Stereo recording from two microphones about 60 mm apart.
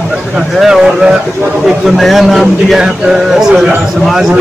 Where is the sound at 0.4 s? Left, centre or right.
Centre.